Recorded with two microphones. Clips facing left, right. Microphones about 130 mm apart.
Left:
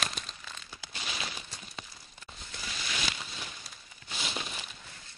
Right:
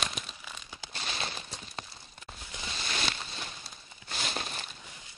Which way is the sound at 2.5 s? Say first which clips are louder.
Right 2 dB; 25° right (ahead or behind).